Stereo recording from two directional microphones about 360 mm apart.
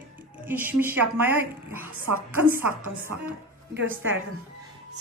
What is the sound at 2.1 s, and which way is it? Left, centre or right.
Speech, right.